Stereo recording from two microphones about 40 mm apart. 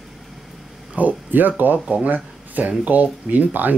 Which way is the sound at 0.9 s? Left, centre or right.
Right.